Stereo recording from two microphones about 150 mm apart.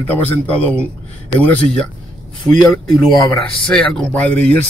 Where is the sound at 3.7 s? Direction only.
5° left (ahead or behind).